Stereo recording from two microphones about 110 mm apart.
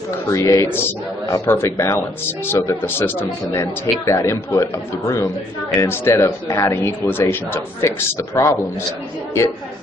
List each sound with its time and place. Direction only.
0.3 s a man's voice: 30° left (ahead or behind)